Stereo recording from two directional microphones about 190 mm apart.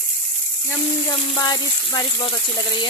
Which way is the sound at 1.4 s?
20° left (ahead or behind).